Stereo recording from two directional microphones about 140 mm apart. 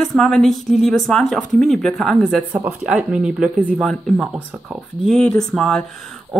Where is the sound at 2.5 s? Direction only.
25° right (ahead or behind).